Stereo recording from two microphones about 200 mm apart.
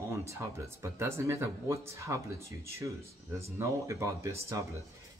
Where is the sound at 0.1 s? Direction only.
15° right (ahead or behind).